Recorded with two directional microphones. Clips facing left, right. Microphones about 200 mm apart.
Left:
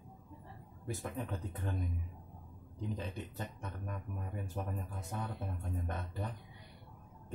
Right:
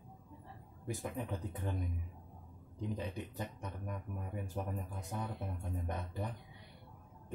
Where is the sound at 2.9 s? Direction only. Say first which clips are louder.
Right 1 dB; 15° right (ahead or behind).